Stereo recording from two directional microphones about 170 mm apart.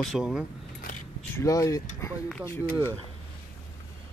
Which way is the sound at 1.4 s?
20° left (ahead or behind).